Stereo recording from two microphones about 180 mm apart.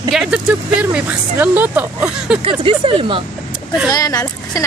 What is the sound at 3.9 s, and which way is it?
Speech, 20° left (ahead or behind).